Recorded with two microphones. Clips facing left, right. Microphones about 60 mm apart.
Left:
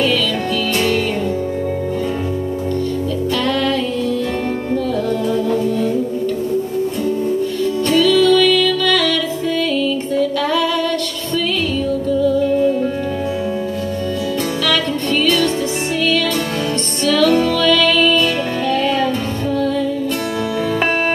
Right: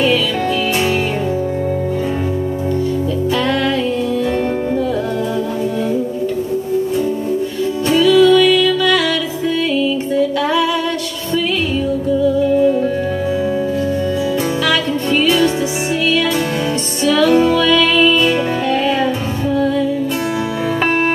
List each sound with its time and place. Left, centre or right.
7.9 s music: centre
12.3 s music: centre
15.2 s music: centre
17.0 s music: centre